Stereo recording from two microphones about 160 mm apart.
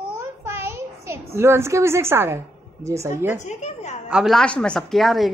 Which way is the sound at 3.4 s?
45° left (ahead or behind).